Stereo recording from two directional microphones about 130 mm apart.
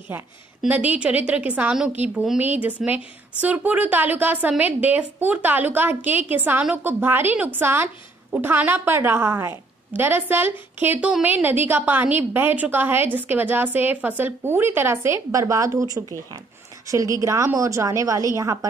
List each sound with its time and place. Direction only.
0.1 s a woman's voice: 15° right (ahead or behind)